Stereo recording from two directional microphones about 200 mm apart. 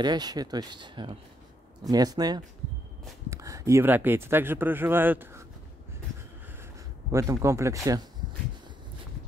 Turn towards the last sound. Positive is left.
turn(degrees=-15)  # may be behind; listen again after turning